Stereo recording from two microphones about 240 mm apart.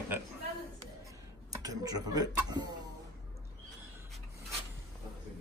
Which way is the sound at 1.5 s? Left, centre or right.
Centre.